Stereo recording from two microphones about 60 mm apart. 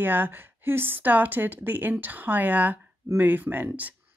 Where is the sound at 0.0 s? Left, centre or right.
Right.